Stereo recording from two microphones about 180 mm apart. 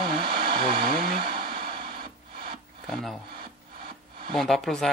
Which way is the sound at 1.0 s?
55° right (ahead or behind).